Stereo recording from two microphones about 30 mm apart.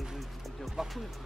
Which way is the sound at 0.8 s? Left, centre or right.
Centre.